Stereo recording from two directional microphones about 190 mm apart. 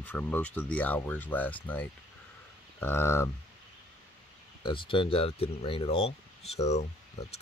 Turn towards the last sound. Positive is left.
turn(degrees=35)  # may be behind; listen again after turning